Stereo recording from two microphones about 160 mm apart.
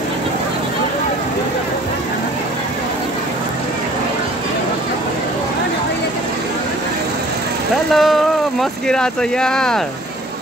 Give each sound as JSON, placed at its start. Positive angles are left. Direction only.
{"t": 7.9, "sound": "speech", "side_deg": 0}